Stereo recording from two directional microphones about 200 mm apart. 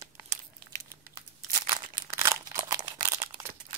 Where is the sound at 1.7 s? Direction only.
15° right (ahead or behind).